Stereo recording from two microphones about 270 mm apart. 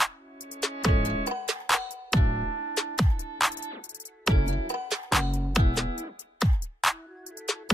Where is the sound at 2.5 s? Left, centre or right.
Right.